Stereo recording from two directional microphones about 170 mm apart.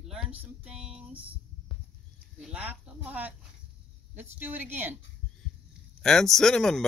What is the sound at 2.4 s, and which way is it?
Speech, 5° right (ahead or behind).